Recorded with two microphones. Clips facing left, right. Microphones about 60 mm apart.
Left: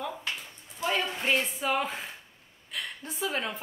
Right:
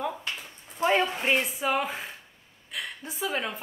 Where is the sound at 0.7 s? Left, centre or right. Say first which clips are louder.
Right 6 dB; right.